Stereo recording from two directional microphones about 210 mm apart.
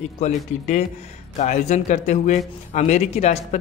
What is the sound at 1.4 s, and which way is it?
Speech, 35° left (ahead or behind).